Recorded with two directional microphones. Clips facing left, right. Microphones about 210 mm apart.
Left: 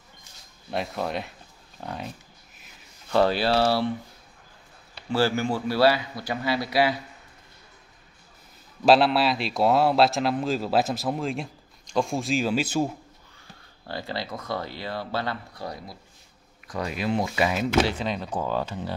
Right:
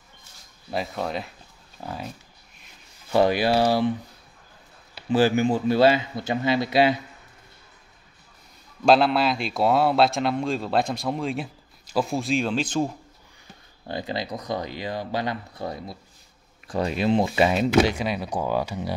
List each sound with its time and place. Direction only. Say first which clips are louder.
0.7 s a man's voice: right 1 dB; centre (ahead or behind)
3.1 s speech: right 2 dB; 15° right (ahead or behind)
5.1 s a man's voice: right 4 dB; 20° right (ahead or behind)
8.8 s a man's voice: even; centre (ahead or behind)
13.8 s a man's voice: right 3 dB; 20° right (ahead or behind)
17.7 s speech: right 3 dB; 10° right (ahead or behind)